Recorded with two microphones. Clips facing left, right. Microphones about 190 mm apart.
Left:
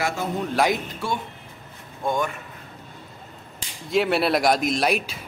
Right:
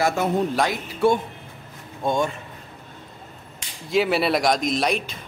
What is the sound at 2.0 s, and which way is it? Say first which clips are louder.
Speech: right 2 dB; 25° right (ahead or behind).